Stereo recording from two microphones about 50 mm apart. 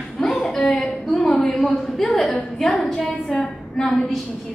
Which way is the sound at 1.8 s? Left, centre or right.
Centre.